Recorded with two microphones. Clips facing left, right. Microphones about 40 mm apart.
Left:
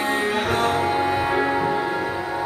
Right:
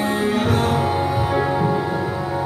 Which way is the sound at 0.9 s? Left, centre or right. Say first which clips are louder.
Even; left.